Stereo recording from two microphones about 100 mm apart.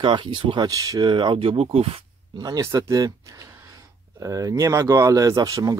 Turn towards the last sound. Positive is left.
turn(degrees=-35)  # may be behind; listen again after turning